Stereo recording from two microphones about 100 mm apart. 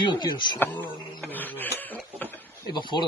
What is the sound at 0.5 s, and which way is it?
Speech, 20° left (ahead or behind).